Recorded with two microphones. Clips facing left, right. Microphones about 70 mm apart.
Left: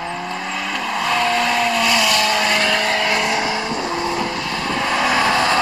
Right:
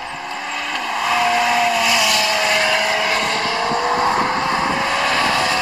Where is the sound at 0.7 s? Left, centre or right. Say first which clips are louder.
Right 1 dB; centre.